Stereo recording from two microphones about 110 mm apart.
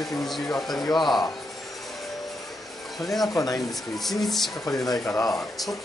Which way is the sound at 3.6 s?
Centre (ahead or behind).